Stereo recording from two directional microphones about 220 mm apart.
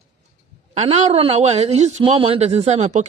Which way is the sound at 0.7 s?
30° right (ahead or behind).